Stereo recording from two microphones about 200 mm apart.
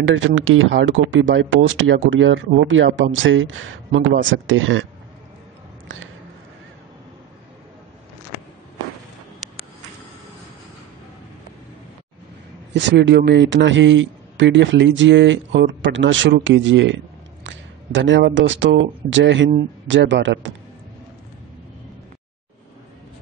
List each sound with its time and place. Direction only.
0.0 s speech: 75° right (ahead or behind)
5.9 s speech: 75° right (ahead or behind)
12.7 s a man's voice: 60° right (ahead or behind)